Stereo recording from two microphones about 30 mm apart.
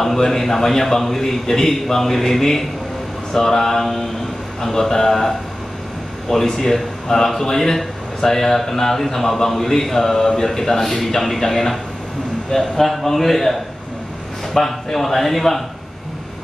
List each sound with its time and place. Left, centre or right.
0.0 s a man's voice: centre
10.8 s a man's voice: centre